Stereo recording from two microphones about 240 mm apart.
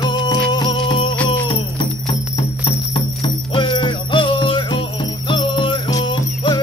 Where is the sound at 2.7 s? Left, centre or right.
Left.